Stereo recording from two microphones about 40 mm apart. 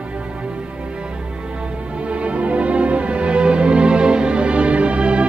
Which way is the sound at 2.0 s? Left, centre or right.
Right.